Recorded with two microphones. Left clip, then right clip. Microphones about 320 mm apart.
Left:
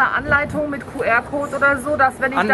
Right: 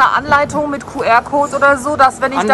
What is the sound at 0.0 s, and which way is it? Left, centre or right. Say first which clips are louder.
Speech: right 6 dB; centre.